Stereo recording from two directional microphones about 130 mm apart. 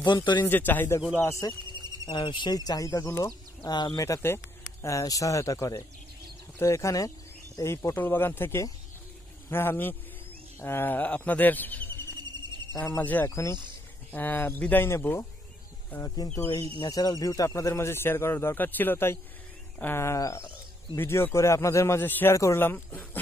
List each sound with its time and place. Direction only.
0.0 s speech: 35° left (ahead or behind)
0.4 s speech: 15° left (ahead or behind)
1.7 s a sound: 35° right (ahead or behind)
2.0 s speech: 40° left (ahead or behind); by 12.1 s 15° left (ahead or behind)
12.3 s music: 35° right (ahead or behind)
12.8 s speech: 15° left (ahead or behind)
16.4 s speech: 35° left (ahead or behind); by 23.0 s 15° left (ahead or behind)